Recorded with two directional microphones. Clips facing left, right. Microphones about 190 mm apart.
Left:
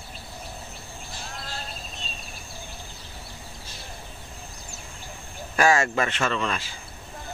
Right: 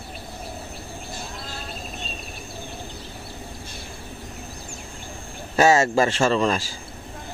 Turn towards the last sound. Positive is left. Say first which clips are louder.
# right 7 dB
turn(degrees=-40)  # may be behind; listen again after turning